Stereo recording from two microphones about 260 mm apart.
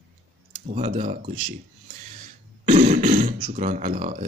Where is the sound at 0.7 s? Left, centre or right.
Right.